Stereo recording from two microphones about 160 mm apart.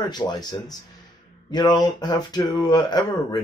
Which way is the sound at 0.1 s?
25° left (ahead or behind).